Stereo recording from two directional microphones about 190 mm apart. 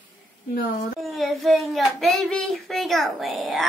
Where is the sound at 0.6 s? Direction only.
50° left (ahead or behind).